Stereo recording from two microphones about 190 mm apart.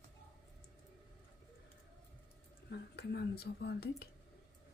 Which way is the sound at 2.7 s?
65° left (ahead or behind).